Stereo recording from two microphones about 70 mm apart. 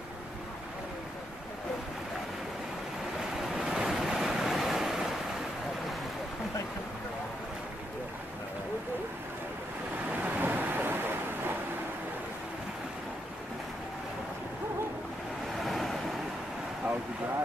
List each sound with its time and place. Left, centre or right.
3.3 s waves: centre
10.2 s a sound: right
15.6 s vehicle: centre